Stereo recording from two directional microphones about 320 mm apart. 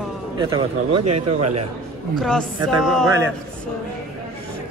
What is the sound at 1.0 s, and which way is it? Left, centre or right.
Speech, right.